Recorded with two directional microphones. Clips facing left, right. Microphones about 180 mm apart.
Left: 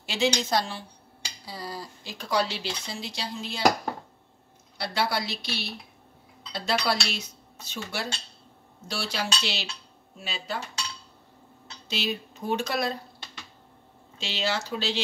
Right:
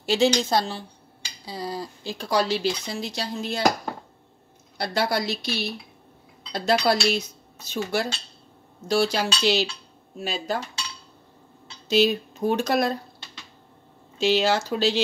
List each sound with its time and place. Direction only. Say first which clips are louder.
0.0 s speech: right 6 dB; 35° right (ahead or behind)
4.7 s a woman's voice: right 4 dB; 45° right (ahead or behind)
11.9 s a woman's voice: right 11 dB; 45° right (ahead or behind)
14.2 s a woman's voice: right 9 dB; 45° right (ahead or behind)